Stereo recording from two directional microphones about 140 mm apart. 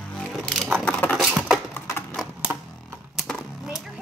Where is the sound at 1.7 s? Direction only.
20° left (ahead or behind).